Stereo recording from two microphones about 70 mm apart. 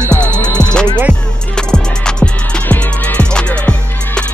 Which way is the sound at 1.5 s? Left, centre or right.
Centre.